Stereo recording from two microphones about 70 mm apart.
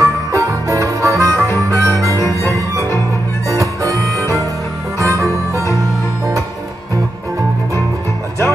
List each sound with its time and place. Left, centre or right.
0.0 s music: right
1.3 s harmonica: left
1.7 s harmonica: right
2.1 s harmonica: left
3.4 s harmonica: right
4.9 s music: right